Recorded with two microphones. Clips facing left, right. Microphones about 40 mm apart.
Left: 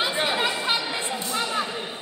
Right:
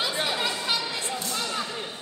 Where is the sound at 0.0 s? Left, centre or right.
Left.